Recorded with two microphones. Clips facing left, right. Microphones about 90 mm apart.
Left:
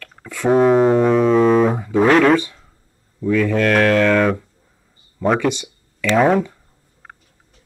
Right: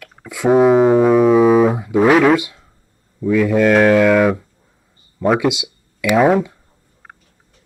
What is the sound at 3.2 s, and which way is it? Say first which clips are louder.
Speech: right 3 dB; 10° right (ahead or behind).